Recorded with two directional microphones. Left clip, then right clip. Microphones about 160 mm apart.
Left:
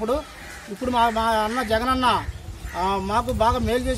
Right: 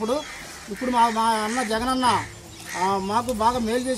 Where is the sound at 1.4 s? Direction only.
35° left (ahead or behind).